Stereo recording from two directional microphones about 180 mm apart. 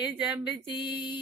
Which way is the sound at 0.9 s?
25° left (ahead or behind).